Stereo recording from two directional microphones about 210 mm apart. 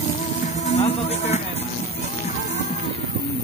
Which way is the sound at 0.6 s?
35° left (ahead or behind).